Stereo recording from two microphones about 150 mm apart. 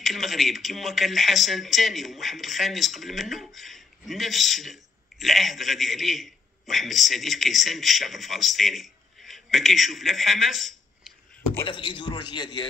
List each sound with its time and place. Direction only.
0.0 s a man's voice: centre (ahead or behind)
11.6 s a man's voice: 35° left (ahead or behind)